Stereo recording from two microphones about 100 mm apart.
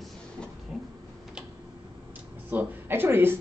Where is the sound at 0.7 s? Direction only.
5° right (ahead or behind).